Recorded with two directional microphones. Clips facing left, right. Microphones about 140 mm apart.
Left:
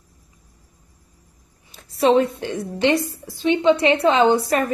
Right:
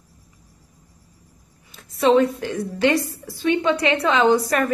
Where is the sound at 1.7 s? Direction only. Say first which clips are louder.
Even; 35° left (ahead or behind).